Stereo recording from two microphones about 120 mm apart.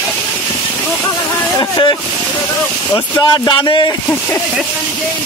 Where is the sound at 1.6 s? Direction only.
40° left (ahead or behind).